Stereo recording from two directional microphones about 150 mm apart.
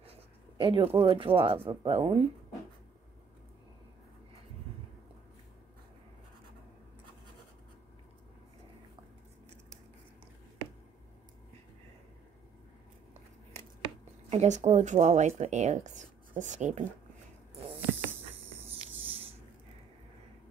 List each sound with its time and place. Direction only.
0.6 s speech: 35° right (ahead or behind)
14.3 s speech: 50° right (ahead or behind)
19.0 s a sound: 40° right (ahead or behind)